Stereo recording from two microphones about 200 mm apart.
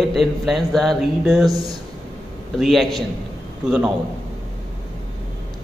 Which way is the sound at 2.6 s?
Centre (ahead or behind).